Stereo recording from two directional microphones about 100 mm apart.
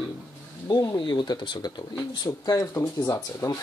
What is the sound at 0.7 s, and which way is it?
Speech, 45° left (ahead or behind).